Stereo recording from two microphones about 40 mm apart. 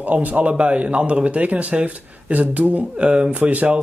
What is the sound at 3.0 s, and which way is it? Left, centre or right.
Speech, right.